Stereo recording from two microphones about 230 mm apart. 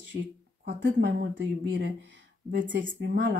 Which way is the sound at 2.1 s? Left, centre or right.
Right.